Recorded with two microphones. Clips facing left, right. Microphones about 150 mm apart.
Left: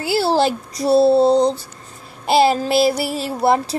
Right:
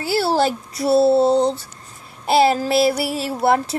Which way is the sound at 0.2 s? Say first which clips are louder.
Left 1 dB; 25° left (ahead or behind).